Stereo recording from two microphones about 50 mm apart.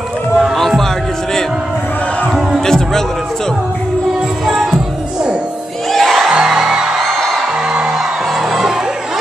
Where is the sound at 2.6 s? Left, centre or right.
Centre.